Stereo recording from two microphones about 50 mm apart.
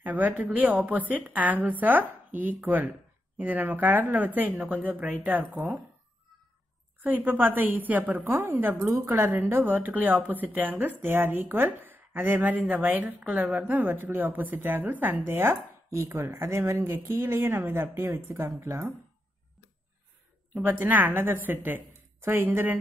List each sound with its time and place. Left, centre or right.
0.0 s speech: right
7.0 s a woman's voice: right
15.3 s chopping: right
20.6 s a woman's voice: right